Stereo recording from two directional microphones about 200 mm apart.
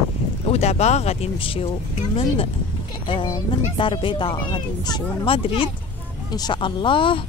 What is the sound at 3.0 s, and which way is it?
Speech, 25° left (ahead or behind).